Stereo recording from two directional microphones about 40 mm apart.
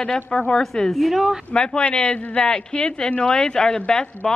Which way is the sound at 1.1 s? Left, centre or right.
Centre.